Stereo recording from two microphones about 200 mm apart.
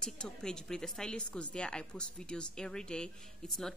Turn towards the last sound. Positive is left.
turn(degrees=0)  # may be behind; listen again after turning